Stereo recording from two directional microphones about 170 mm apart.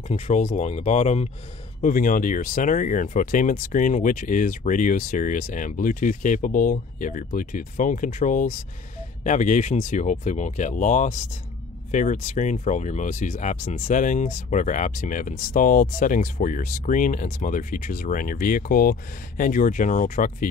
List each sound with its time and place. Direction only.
0.1 s speech: 45° left (ahead or behind)
1.8 s speech: 50° left (ahead or behind)